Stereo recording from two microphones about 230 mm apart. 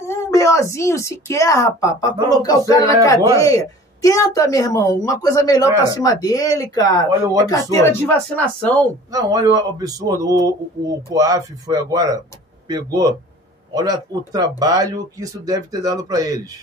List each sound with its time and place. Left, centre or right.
0.1 s speech: centre
9.1 s speech: centre